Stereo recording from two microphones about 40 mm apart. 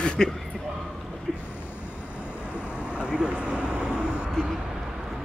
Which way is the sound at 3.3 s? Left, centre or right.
Right.